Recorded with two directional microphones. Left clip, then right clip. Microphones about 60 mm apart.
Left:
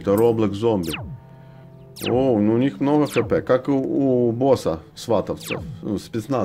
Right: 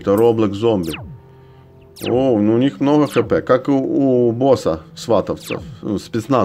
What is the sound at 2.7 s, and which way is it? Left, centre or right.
Speech, right.